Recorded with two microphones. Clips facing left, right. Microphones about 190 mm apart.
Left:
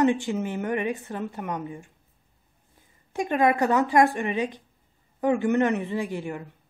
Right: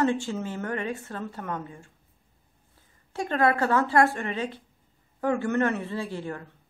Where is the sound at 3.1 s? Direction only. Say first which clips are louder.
Left 2 dB; 15° left (ahead or behind).